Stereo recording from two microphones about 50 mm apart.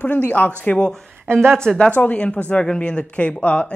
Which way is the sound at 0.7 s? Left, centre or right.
Centre.